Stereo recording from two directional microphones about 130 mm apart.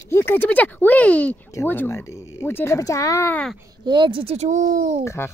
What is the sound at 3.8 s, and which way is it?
Speech, 40° right (ahead or behind).